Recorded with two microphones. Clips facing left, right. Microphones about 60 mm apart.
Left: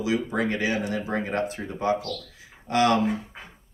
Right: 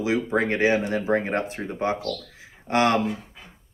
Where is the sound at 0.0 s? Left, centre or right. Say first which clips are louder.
Right 2 dB; right.